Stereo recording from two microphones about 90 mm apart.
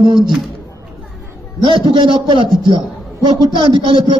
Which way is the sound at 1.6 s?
65° right (ahead or behind).